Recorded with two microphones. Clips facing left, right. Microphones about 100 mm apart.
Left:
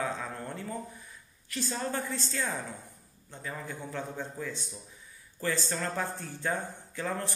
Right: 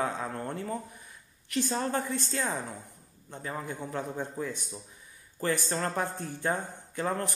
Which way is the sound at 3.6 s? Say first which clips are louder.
Right 3 dB; 15° right (ahead or behind).